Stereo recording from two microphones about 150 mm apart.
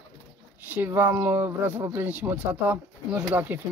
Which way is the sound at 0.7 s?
15° right (ahead or behind).